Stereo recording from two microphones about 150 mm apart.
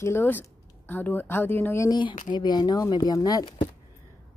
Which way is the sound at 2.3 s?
30° left (ahead or behind).